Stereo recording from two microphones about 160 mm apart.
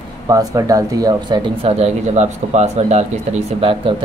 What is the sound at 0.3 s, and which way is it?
Speech, 20° right (ahead or behind).